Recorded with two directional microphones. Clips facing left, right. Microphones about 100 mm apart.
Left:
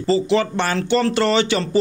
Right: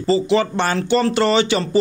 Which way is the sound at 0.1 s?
15° right (ahead or behind).